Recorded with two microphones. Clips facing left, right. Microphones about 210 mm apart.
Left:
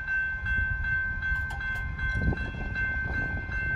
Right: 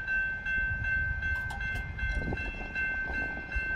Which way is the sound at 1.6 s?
25° right (ahead or behind).